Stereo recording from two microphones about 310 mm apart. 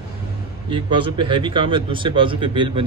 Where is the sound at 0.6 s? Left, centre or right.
Centre.